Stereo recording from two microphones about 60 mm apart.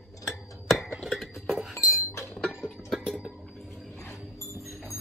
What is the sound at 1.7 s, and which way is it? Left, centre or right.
Chink, left.